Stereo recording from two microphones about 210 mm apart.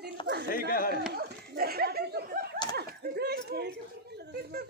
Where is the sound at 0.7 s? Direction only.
45° left (ahead or behind).